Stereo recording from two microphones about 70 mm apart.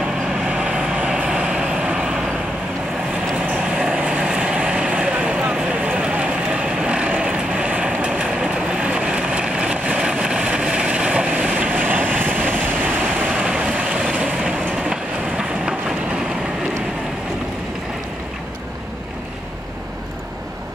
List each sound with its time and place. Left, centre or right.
0.0 s vehicle: centre
3.4 s vehicle: centre